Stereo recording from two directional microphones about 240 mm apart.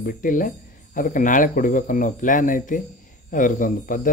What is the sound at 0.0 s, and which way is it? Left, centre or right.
Speech, left.